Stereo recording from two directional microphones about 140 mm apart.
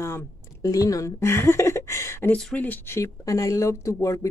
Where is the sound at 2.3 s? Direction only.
5° left (ahead or behind).